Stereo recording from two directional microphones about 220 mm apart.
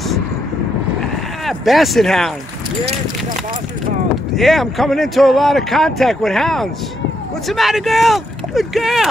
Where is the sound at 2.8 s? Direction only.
30° right (ahead or behind).